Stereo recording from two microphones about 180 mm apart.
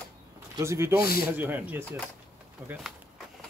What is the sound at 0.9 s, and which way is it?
Speech, 60° left (ahead or behind).